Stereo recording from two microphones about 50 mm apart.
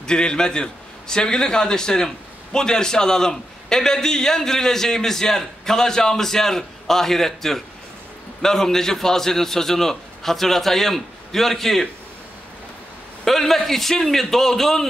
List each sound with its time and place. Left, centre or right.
0.0 s a man's voice: centre
13.2 s a man's voice: centre